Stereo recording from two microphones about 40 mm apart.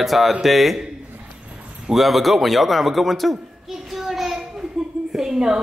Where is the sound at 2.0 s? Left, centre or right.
Centre.